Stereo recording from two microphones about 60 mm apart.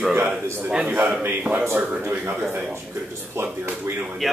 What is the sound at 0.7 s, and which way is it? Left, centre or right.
A man's voice, right.